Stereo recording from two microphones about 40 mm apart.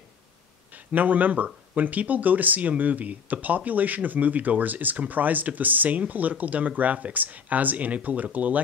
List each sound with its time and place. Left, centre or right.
0.9 s speech: right